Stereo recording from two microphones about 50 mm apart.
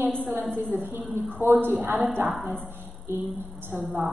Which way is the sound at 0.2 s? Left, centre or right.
Right.